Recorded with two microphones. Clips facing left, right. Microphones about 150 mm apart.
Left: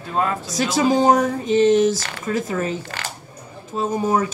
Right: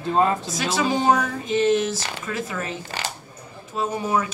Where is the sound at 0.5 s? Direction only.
40° left (ahead or behind).